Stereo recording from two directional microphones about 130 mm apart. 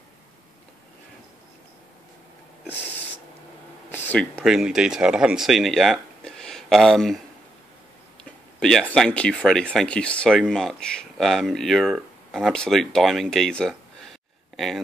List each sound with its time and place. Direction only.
3.9 s a sound: 15° left (ahead or behind)
4.5 s speech: 5° right (ahead or behind)
8.2 s speech: 5° left (ahead or behind)